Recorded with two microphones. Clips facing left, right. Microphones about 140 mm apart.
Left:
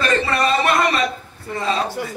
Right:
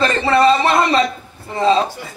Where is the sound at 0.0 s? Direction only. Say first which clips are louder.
Right 5 dB; 25° right (ahead or behind).